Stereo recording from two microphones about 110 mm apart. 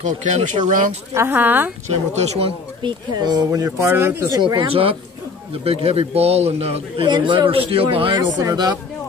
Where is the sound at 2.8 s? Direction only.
40° right (ahead or behind); by 4.3 s 20° right (ahead or behind).